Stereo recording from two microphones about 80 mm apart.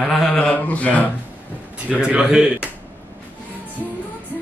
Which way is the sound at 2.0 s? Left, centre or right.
Centre.